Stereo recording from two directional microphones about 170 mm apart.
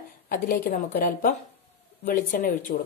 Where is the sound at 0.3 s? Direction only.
60° left (ahead or behind).